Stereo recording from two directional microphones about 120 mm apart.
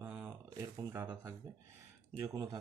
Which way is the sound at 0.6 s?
30° right (ahead or behind).